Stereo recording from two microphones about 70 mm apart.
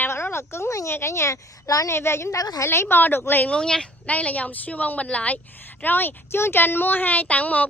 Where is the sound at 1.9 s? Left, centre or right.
Left.